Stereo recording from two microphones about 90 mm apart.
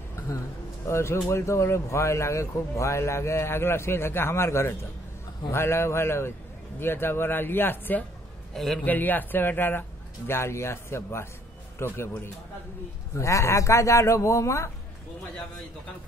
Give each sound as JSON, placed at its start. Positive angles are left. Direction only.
{"t": 0.8, "sound": "a man's voice", "side_deg": 30}
{"t": 8.5, "sound": "a man's voice", "side_deg": 5}
{"t": 8.8, "sound": "a man's voice", "side_deg": 20}
{"t": 13.1, "sound": "speech", "side_deg": 35}